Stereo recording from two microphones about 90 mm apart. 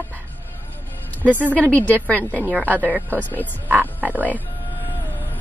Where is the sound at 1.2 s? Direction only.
20° right (ahead or behind).